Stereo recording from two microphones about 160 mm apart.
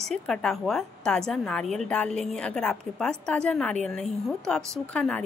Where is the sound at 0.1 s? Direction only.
5° left (ahead or behind).